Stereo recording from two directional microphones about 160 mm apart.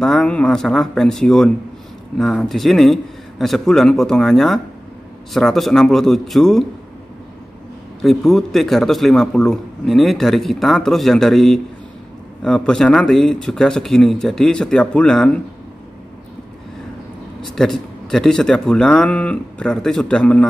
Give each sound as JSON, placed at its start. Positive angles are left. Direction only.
{"t": 0.0, "sound": "a man's voice", "side_deg": 5}
{"t": 8.0, "sound": "a man's voice", "side_deg": 0}
{"t": 17.4, "sound": "a man's voice", "side_deg": 5}